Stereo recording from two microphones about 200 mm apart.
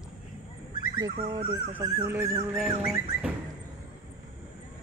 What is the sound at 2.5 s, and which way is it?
Speech, centre (ahead or behind).